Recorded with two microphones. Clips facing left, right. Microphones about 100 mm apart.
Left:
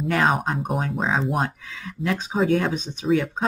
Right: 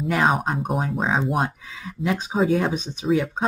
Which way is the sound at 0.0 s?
Centre (ahead or behind).